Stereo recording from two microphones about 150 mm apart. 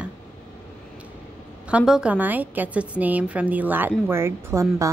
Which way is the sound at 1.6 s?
5° right (ahead or behind).